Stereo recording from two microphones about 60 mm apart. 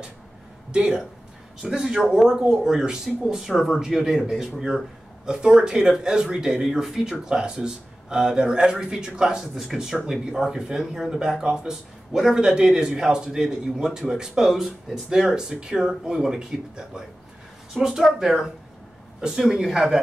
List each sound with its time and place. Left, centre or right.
0.7 s speech: centre